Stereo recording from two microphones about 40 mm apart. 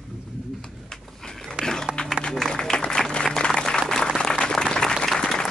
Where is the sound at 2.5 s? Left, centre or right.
Centre.